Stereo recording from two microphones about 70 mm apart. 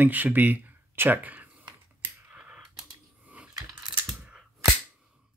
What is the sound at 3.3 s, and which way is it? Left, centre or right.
Coin, centre.